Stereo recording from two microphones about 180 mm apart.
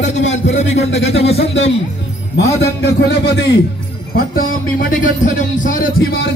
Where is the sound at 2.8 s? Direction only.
70° left (ahead or behind).